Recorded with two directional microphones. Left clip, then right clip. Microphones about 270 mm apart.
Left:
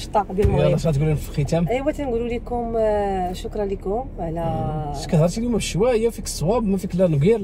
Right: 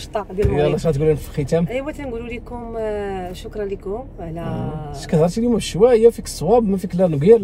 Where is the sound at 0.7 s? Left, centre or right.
Centre.